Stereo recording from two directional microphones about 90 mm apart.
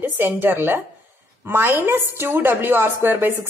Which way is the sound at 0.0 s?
20° right (ahead or behind).